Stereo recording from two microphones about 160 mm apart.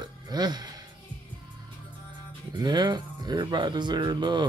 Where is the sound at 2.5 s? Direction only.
25° right (ahead or behind).